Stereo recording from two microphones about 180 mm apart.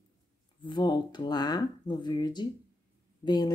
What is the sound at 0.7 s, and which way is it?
Speech, 25° left (ahead or behind).